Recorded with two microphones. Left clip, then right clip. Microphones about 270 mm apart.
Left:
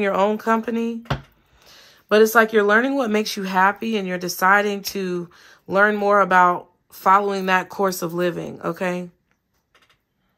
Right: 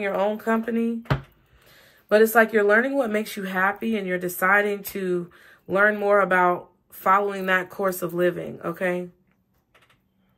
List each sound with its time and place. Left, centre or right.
0.0 s speech: left
1.6 s a sound: centre
2.3 s speech: centre